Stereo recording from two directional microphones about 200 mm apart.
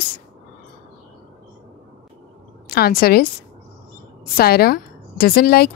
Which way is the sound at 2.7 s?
50° left (ahead or behind).